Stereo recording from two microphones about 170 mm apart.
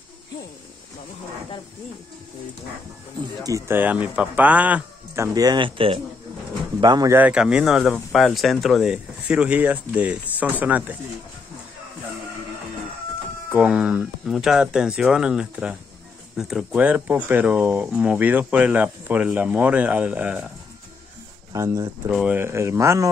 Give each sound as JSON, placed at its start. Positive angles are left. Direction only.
{"t": 3.4, "sound": "speech", "side_deg": -15}
{"t": 7.2, "sound": "speech", "side_deg": -5}
{"t": 13.5, "sound": "speech", "side_deg": -5}
{"t": 21.5, "sound": "speech", "side_deg": -15}